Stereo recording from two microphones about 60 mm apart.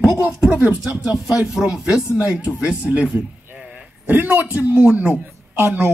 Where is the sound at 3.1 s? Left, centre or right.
Centre.